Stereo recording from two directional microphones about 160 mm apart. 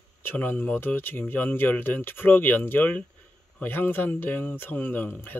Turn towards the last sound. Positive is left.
turn(degrees=10)  # may be behind; listen again after turning